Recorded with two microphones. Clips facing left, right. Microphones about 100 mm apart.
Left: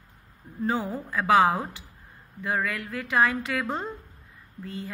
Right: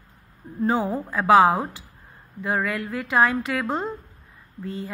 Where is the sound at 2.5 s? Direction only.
20° right (ahead or behind).